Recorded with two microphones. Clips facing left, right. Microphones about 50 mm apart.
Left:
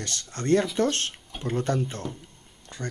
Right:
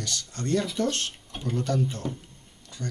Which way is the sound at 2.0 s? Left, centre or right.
Centre.